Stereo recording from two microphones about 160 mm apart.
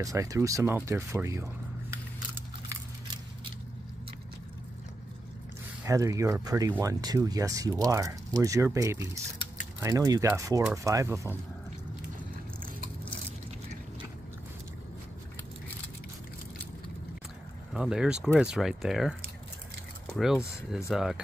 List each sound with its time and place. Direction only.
0.0 s speech: 20° right (ahead or behind)
5.9 s speech: 20° right (ahead or behind)
17.7 s speech: 5° right (ahead or behind)
20.1 s a sound: centre (ahead or behind)
20.9 s speech: centre (ahead or behind)